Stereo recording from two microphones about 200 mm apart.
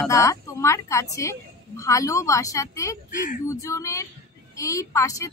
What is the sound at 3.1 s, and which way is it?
Speech, 40° left (ahead or behind).